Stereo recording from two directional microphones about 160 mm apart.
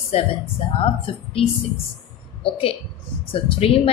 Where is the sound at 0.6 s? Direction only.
35° left (ahead or behind).